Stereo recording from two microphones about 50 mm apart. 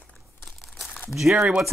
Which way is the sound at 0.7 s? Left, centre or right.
Centre.